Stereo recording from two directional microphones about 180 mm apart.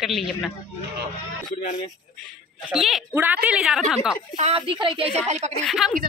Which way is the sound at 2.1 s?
5° right (ahead or behind).